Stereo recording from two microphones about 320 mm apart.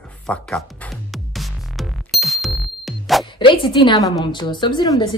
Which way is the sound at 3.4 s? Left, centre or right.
Centre.